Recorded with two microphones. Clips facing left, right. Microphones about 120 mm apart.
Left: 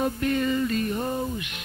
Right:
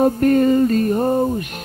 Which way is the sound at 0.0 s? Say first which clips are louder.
Right 11 dB; 45° right (ahead or behind).